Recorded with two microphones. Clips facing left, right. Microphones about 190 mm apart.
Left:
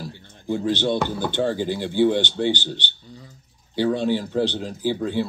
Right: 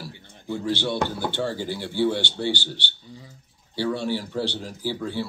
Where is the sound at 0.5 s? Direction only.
20° left (ahead or behind).